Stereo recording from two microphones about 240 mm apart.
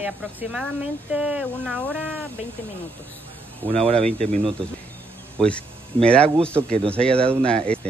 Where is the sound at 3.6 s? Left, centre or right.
Right.